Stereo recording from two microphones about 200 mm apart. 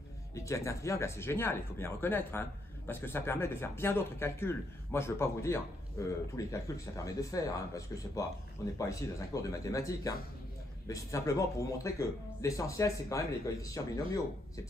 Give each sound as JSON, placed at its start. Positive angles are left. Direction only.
{"t": 0.3, "sound": "speech", "side_deg": 15}